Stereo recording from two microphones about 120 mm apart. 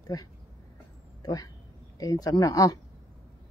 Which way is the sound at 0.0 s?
35° left (ahead or behind).